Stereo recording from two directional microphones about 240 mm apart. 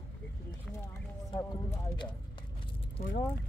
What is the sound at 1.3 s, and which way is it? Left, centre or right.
Speech, centre.